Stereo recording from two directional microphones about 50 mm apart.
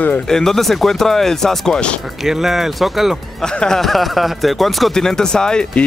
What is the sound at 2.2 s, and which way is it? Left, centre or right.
Speech, centre.